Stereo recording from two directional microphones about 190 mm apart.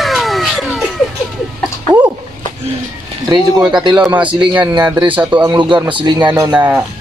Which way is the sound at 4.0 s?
5° right (ahead or behind).